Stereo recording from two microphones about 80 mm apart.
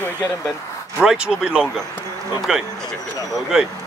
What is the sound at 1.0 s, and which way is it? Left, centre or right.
Speech, centre.